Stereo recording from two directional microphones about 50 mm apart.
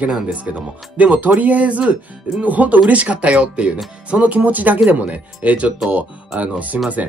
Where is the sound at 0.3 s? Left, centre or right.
Right.